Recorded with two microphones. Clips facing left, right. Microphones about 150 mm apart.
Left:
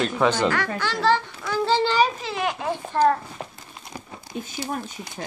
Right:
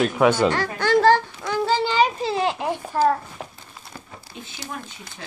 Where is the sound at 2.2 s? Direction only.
30° right (ahead or behind).